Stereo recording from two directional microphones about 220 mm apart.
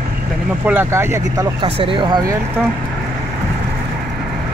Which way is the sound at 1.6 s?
20° right (ahead or behind).